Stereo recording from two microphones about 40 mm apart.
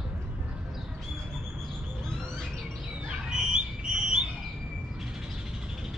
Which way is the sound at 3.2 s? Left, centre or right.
Right.